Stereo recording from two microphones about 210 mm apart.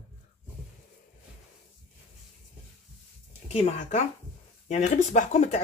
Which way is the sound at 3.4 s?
30° left (ahead or behind).